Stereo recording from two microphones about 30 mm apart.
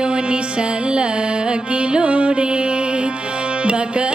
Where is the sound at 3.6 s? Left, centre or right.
Right.